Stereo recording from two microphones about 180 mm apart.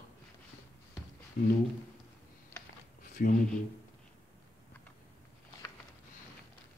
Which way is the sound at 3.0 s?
50° left (ahead or behind).